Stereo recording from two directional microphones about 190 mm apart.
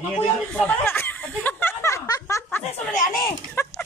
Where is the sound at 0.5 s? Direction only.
10° left (ahead or behind).